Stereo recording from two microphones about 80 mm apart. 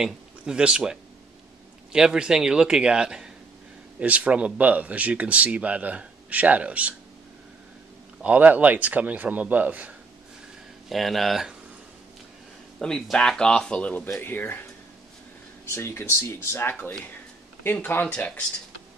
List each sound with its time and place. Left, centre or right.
0.0 s a man's voice: centre
8.2 s speech: centre
10.9 s speech: centre
12.7 s a man's voice: centre
14.0 s speech: left
15.7 s speech: left